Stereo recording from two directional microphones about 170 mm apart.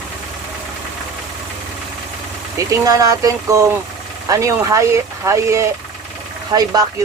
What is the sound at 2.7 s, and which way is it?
Speech, 20° right (ahead or behind).